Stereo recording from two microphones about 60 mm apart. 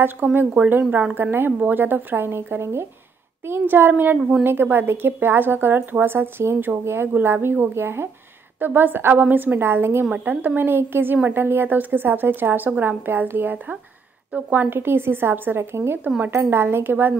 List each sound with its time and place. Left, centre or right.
0.0 s speech: right
0.8 s speech: right
1.1 s speech: right
8.5 s speech: right
10.1 s speech: right